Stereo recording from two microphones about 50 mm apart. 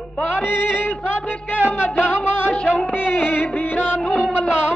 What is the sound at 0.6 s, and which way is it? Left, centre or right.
Music, left.